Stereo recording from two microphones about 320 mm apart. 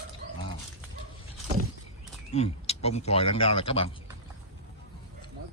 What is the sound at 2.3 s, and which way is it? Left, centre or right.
Speech, centre.